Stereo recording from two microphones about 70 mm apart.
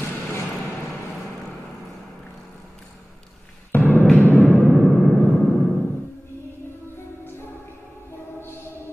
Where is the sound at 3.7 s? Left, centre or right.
Left.